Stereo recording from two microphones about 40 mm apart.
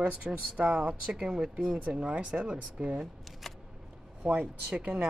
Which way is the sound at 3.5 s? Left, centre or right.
Centre.